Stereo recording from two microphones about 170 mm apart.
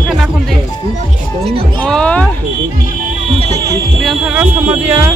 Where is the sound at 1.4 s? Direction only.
35° right (ahead or behind).